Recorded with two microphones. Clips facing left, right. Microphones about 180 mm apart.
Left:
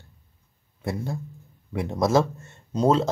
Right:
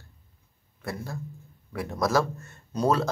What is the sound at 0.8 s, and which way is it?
Speech, 25° left (ahead or behind).